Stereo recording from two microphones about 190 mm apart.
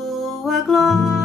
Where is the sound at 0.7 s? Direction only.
Centre (ahead or behind).